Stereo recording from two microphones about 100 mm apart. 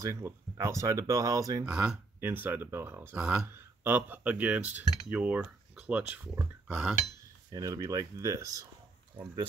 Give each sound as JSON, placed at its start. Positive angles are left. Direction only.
{"t": 0.0, "sound": "speech", "side_deg": -30}
{"t": 1.6, "sound": "cutlery", "side_deg": -10}
{"t": 2.1, "sound": "speech", "side_deg": -20}
{"t": 3.2, "sound": "cutlery", "side_deg": -10}
{"t": 7.5, "sound": "speech", "side_deg": -35}